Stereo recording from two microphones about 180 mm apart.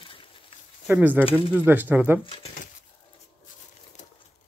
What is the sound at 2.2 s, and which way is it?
Speech, 30° left (ahead or behind).